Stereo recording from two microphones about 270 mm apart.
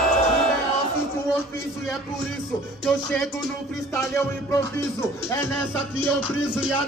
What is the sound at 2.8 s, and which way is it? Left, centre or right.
Music, centre.